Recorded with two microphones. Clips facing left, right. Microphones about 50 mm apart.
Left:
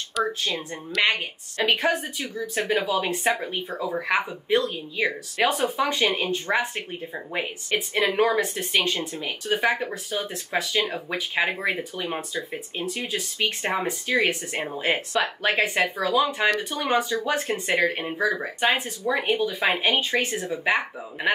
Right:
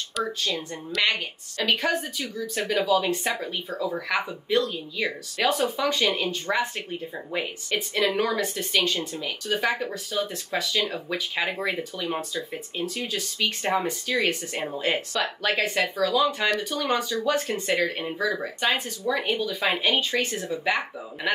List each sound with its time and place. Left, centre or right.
0.2 s speech: centre
1.6 s speech: left